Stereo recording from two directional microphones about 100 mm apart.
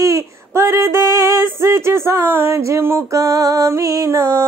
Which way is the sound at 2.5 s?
25° right (ahead or behind).